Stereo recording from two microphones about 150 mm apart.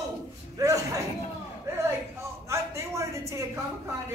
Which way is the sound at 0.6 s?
20° right (ahead or behind).